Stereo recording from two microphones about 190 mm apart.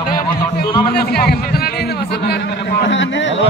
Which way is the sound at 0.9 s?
55° left (ahead or behind).